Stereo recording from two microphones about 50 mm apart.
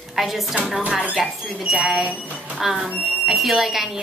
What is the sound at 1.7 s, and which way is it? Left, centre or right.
Speech, right.